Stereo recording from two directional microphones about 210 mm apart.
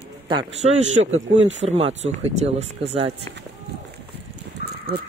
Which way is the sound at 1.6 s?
30° right (ahead or behind).